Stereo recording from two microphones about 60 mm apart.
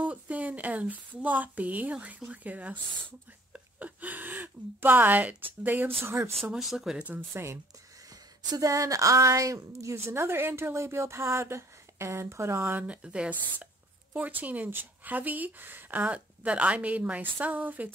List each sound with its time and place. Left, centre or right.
0.0 s speech: right
6.0 s speech: right
6.5 s speech: centre
7.3 s speech: right
8.1 s speech: right
9.9 s speech: right
12.8 s speech: centre